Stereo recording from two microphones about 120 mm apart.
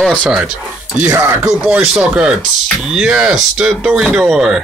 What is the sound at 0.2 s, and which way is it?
Speech, 10° right (ahead or behind).